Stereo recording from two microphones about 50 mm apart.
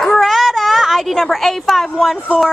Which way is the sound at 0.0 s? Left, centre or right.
Centre.